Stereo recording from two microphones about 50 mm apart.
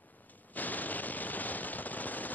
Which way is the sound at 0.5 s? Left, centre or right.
Left.